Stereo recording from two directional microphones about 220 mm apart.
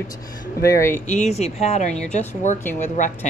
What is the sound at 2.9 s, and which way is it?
Speech, 35° left (ahead or behind).